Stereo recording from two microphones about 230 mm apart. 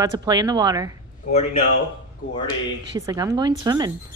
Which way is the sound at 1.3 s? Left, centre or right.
Left.